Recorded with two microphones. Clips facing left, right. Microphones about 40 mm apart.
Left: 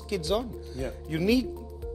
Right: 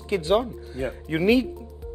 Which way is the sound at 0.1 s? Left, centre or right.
Right.